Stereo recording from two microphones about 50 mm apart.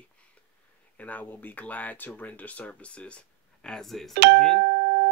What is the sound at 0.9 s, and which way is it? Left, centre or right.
Speech, left.